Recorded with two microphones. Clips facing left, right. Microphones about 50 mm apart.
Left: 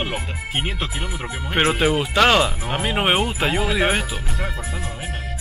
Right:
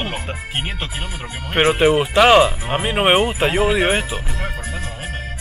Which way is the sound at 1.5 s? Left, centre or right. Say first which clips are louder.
Right 4 dB; centre.